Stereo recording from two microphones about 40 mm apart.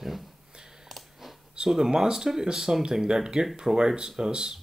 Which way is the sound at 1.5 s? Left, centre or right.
Centre.